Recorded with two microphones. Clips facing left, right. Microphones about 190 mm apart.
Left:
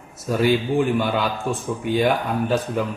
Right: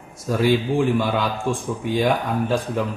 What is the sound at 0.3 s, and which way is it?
A man's voice, centre (ahead or behind).